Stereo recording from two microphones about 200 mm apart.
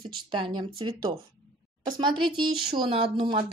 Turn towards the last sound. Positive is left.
turn(degrees=-25)  # may be behind; listen again after turning